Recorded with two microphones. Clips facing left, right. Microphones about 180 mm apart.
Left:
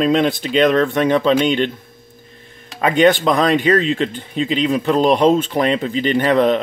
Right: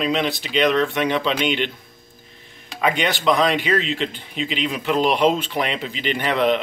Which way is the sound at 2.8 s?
45° left (ahead or behind).